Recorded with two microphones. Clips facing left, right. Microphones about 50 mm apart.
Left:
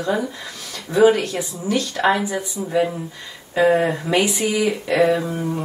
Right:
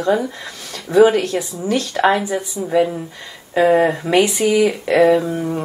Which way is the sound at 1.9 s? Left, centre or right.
Centre.